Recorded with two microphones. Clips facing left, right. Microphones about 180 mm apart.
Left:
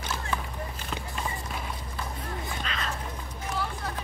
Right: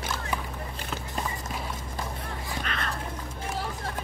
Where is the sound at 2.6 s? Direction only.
55° right (ahead or behind).